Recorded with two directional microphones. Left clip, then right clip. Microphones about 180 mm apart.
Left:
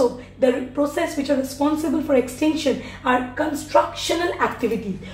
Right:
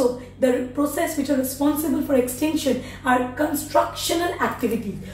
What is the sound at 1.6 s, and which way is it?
Speech, 15° left (ahead or behind).